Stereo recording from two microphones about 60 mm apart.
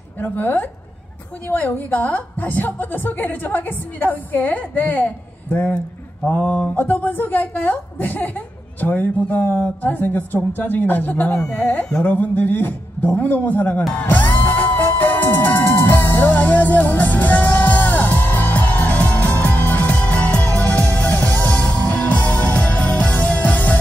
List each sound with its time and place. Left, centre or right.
0.2 s a woman's voice: left
11.3 s a woman's voice: centre
12.0 s a woman's voice: left
13.9 s music: left